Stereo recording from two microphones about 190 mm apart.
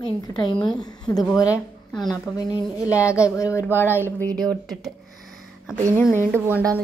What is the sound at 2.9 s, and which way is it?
A woman's voice, 15° left (ahead or behind).